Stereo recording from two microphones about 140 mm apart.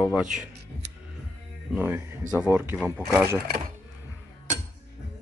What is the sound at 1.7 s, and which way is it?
Speech, 15° right (ahead or behind).